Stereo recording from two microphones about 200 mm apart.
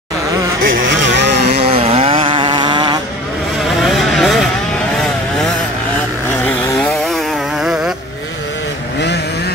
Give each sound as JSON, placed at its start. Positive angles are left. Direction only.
{"t": 0.6, "sound": "vehicle", "side_deg": -70}
{"t": 1.6, "sound": "vehicle", "side_deg": -30}
{"t": 3.8, "sound": "vehicle", "side_deg": 0}